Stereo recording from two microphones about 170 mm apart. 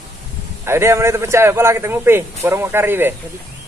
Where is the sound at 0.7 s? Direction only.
15° right (ahead or behind).